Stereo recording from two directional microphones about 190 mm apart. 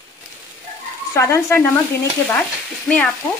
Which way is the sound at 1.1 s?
15° left (ahead or behind).